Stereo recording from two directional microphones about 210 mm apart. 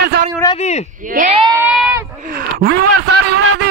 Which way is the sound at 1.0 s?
40° right (ahead or behind).